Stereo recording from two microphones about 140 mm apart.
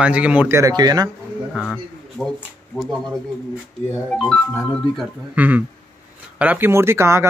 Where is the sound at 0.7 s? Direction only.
30° right (ahead or behind).